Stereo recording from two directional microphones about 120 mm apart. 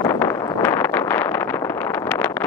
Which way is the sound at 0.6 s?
20° left (ahead or behind).